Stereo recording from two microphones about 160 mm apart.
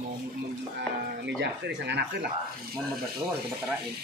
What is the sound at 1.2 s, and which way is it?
Speech, 90° right.